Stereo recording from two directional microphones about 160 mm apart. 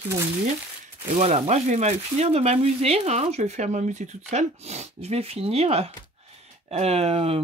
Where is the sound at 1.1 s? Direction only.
40° right (ahead or behind).